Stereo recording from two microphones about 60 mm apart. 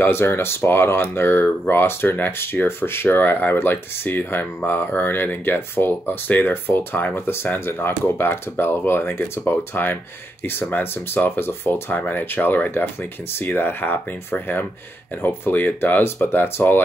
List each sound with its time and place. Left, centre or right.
0.0 s speech: left